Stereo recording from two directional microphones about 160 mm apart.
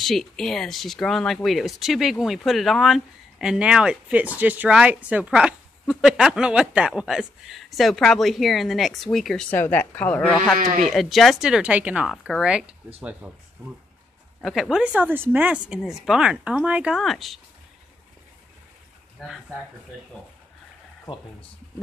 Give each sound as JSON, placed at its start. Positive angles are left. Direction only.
{"t": 0.0, "sound": "speech", "side_deg": 0}
{"t": 10.6, "sound": "speech", "side_deg": -55}
{"t": 10.9, "sound": "speech", "side_deg": 0}
{"t": 14.4, "sound": "speech", "side_deg": 0}
{"t": 19.1, "sound": "speech", "side_deg": 0}